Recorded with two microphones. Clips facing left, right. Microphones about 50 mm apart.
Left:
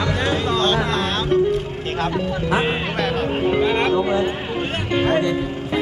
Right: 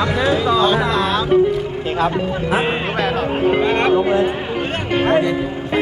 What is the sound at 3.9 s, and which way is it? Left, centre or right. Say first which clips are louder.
Speech: right 4 dB; right.